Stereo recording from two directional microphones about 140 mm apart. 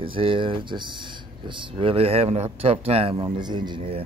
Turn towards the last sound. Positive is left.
turn(degrees=-40)  # may be behind; listen again after turning